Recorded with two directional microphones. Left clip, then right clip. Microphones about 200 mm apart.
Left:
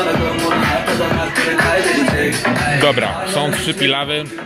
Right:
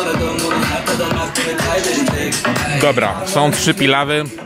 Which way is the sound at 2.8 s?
25° right (ahead or behind).